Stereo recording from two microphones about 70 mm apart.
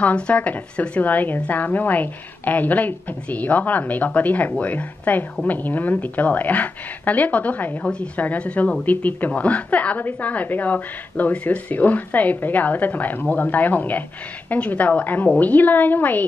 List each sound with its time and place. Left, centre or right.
0.0 s a woman's voice: centre